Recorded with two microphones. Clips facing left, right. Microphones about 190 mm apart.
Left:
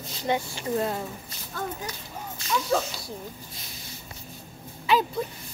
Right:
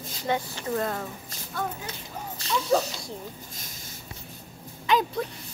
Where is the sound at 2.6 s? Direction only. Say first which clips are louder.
Right 5 dB; centre (ahead or behind).